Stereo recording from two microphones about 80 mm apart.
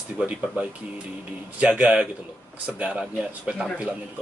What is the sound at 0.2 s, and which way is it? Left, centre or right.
A man's voice, centre.